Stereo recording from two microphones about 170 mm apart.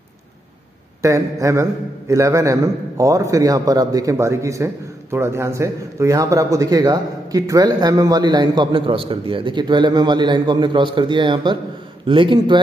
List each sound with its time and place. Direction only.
1.0 s speech: 20° right (ahead or behind)